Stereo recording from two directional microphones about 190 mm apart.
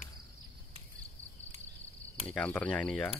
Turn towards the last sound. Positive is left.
turn(degrees=5)  # may be behind; listen again after turning